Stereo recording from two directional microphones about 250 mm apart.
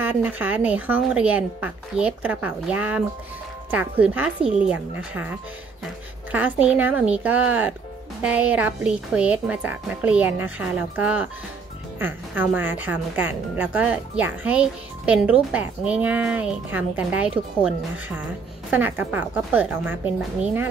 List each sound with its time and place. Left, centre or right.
0.0 s speech: centre
6.3 s speech: centre